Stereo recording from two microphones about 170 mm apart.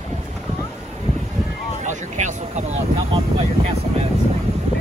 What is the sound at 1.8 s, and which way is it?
Speech, 45° right (ahead or behind).